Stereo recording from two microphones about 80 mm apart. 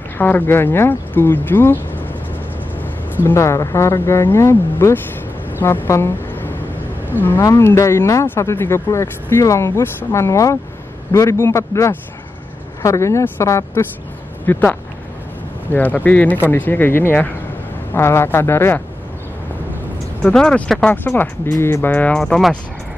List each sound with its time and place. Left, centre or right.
0.2 s speech: left
3.3 s speech: left
5.9 s vehicle: left
7.1 s speech: left
14.4 s speech: left
20.3 s speech: centre
20.9 s speech: left
21.9 s speech: centre
22.2 s speech: centre